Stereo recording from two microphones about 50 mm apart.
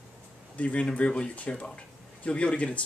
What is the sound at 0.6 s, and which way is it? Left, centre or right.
Speech, left.